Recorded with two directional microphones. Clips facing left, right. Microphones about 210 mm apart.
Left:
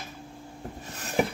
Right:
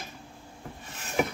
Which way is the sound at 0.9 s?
35° left (ahead or behind).